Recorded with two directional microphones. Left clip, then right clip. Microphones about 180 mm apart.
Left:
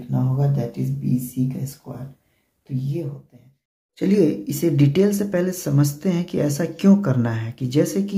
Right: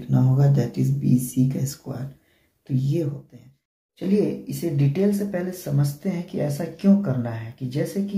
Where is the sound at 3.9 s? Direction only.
35° left (ahead or behind).